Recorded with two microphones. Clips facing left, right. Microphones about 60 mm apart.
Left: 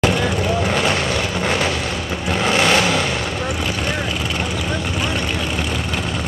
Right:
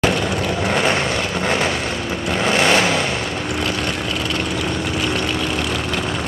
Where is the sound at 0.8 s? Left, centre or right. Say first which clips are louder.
Right 1 dB; centre.